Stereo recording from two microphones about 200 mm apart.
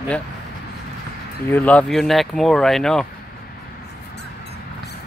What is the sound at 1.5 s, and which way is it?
Speech, 5° left (ahead or behind).